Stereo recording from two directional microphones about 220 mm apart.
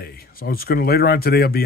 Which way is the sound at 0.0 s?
45° left (ahead or behind).